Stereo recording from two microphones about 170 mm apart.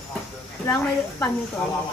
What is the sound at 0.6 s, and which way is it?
Speech, 15° left (ahead or behind).